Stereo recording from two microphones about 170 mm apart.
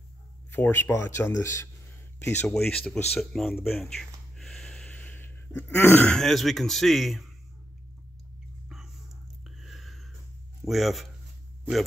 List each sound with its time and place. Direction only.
0.5 s speech: 10° left (ahead or behind)
2.4 s speech: 5° left (ahead or behind)
8.6 s a sound: centre (ahead or behind)
10.6 s speech: centre (ahead or behind)